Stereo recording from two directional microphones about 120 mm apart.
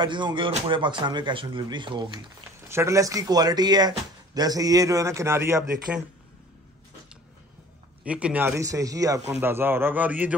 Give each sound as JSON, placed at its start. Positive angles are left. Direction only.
{"t": 0.0, "sound": "speech", "side_deg": -40}
{"t": 2.7, "sound": "a man's voice", "side_deg": -25}
{"t": 8.0, "sound": "a man's voice", "side_deg": -10}
{"t": 8.6, "sound": "a man's voice", "side_deg": -30}
{"t": 9.3, "sound": "a man's voice", "side_deg": -20}